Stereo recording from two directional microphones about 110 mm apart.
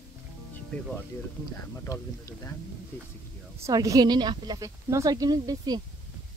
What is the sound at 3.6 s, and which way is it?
A woman's voice, 30° right (ahead or behind).